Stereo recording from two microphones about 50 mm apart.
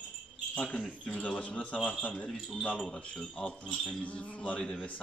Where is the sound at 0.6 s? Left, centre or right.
Left; by 4.0 s centre.